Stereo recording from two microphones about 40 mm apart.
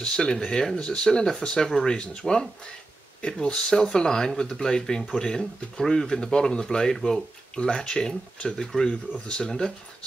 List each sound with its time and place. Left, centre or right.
0.0 s speech: centre
3.4 s speech: left
7.5 s speech: left